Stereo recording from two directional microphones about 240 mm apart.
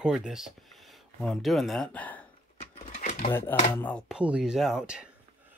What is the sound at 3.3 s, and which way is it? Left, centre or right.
Speech, centre.